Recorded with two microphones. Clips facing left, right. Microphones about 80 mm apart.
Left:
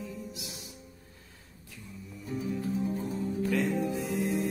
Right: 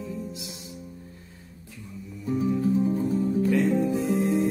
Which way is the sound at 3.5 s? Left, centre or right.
Right.